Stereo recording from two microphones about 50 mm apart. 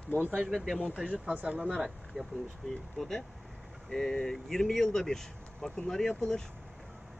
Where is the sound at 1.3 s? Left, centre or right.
Right.